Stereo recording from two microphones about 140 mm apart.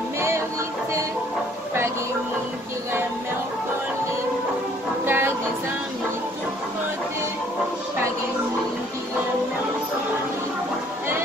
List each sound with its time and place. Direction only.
5.0 s music: 15° right (ahead or behind)